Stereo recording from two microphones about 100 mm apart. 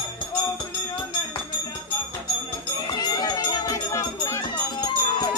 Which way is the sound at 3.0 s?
45° left (ahead or behind).